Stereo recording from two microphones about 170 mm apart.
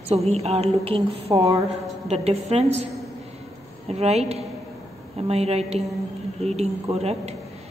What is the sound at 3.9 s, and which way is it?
Speech, 40° right (ahead or behind).